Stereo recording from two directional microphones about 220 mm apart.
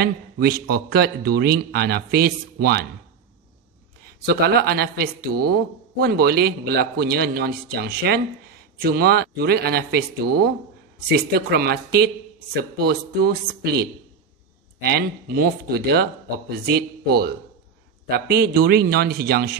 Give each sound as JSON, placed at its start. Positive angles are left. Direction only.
{"t": 0.0, "sound": "a man's voice", "side_deg": -45}
{"t": 4.0, "sound": "a man's voice", "side_deg": -45}
{"t": 11.1, "sound": "a man's voice", "side_deg": -45}